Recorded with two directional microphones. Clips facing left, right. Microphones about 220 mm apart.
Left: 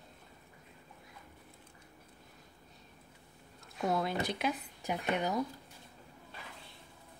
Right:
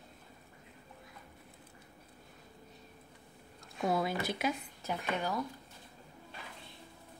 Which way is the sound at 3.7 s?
Centre (ahead or behind).